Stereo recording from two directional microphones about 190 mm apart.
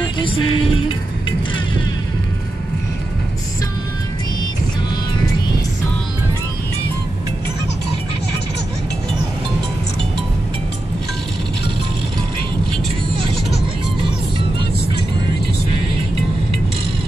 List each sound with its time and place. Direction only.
0.0 s music: 25° left (ahead or behind)